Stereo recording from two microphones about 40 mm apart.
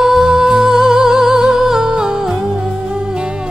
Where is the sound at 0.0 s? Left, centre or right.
Centre.